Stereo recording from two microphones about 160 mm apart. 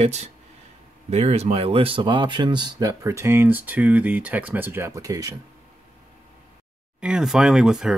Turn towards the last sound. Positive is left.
turn(degrees=-5)  # may be behind; listen again after turning